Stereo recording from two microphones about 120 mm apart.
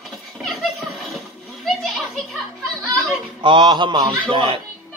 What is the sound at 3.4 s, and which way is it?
Mantra, 40° right (ahead or behind).